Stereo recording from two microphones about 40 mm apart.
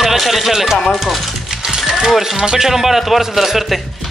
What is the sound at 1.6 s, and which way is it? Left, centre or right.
Music, centre.